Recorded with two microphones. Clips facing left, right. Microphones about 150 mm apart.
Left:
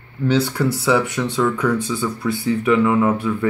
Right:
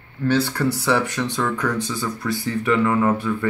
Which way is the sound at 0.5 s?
10° left (ahead or behind).